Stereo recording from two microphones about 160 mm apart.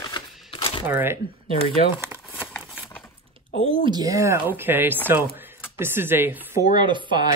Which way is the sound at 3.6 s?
30° right (ahead or behind).